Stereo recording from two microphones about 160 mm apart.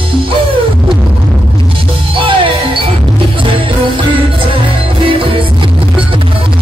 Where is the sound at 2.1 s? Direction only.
35° right (ahead or behind).